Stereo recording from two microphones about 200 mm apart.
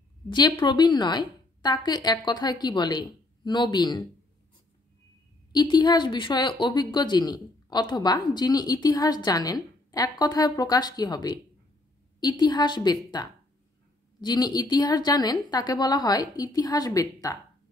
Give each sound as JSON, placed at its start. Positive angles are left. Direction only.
{"t": 0.3, "sound": "a woman's voice", "side_deg": 20}
{"t": 5.5, "sound": "a woman's voice", "side_deg": 20}